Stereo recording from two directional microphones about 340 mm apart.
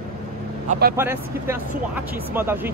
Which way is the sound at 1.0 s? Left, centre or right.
Centre.